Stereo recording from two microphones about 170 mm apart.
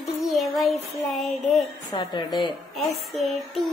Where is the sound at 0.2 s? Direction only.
Centre (ahead or behind).